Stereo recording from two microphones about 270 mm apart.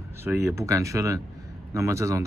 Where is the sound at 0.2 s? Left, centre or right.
Centre.